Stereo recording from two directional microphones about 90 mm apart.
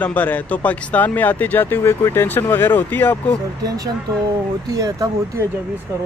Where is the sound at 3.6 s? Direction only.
45° right (ahead or behind).